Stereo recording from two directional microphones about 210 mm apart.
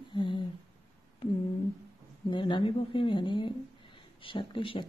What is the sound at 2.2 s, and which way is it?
Speech, 25° left (ahead or behind).